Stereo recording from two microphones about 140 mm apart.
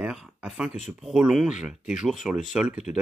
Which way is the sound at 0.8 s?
5° right (ahead or behind).